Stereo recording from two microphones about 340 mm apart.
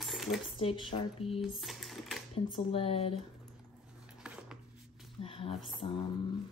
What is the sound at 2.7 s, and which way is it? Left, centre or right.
Speech, centre.